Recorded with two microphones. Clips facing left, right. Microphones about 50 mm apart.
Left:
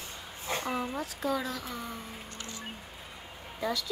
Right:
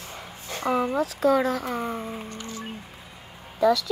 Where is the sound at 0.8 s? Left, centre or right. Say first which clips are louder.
Right 10 dB; right.